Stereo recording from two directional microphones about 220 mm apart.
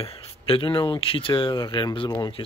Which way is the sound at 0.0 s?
25° left (ahead or behind).